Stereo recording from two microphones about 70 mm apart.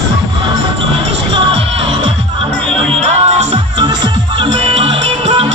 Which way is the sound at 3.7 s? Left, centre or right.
Right.